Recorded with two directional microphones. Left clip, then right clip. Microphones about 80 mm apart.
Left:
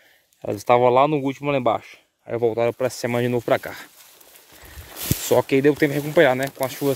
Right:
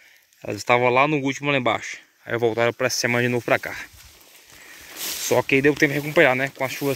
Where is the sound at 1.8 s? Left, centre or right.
Centre.